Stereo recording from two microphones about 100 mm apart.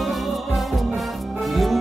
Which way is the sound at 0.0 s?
Centre (ahead or behind).